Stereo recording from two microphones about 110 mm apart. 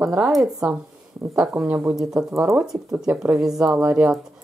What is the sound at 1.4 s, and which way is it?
Speech, 10° right (ahead or behind).